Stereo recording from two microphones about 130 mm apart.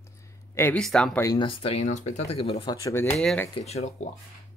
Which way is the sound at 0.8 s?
5° left (ahead or behind).